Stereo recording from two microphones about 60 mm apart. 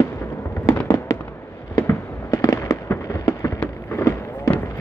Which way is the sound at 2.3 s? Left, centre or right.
Left.